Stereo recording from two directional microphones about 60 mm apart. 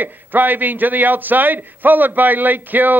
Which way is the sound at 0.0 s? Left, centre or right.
Right.